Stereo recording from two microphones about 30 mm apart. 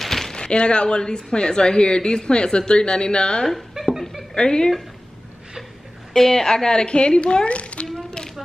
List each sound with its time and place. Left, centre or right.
0.0 s a sound: centre
0.3 s a woman's voice: left
6.1 s a woman's voice: centre; by 7.8 s left